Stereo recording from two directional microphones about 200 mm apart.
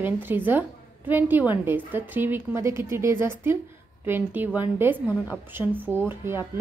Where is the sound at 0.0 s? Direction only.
10° right (ahead or behind).